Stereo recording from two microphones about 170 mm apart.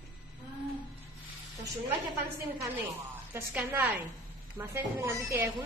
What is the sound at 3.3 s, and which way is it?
A woman's voice, 10° right (ahead or behind).